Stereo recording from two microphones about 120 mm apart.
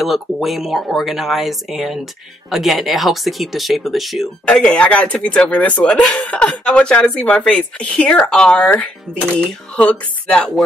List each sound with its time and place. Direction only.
0.0 s speech: centre (ahead or behind)
8.6 s speech: 15° left (ahead or behind)